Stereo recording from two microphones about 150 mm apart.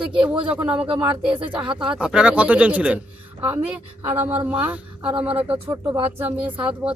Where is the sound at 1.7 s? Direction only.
35° right (ahead or behind).